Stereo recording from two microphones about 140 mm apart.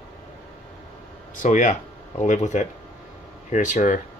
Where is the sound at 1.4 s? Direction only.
65° left (ahead or behind).